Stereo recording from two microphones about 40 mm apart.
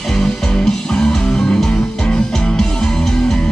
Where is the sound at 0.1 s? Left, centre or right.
Centre.